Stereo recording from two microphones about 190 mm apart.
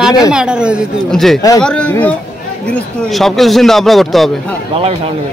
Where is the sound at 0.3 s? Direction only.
5° right (ahead or behind).